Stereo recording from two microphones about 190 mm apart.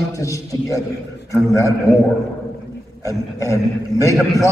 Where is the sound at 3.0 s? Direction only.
15° left (ahead or behind).